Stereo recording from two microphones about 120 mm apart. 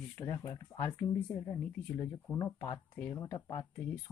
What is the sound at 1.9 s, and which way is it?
Speech, 20° left (ahead or behind).